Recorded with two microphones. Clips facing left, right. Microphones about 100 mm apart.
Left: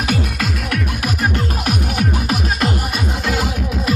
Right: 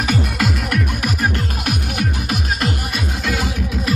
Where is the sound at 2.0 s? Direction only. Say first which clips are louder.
Left 3 dB; 35° left (ahead or behind).